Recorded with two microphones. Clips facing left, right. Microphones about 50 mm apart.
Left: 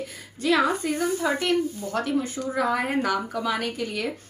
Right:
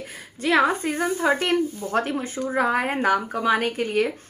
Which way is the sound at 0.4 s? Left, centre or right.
Right.